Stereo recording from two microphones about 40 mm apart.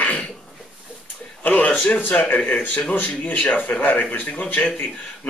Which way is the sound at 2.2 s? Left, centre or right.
Left.